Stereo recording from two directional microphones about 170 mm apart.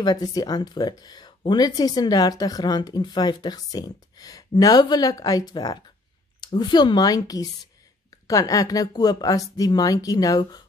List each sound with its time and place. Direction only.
0.0 s speech: 20° left (ahead or behind)